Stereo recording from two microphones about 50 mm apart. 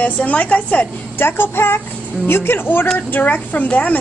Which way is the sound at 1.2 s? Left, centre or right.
Left.